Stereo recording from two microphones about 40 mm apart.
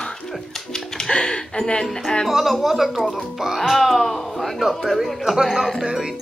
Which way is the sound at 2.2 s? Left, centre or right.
Centre.